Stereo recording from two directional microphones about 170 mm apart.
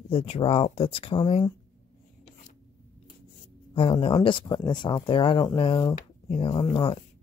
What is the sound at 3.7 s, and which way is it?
Speech, 35° left (ahead or behind).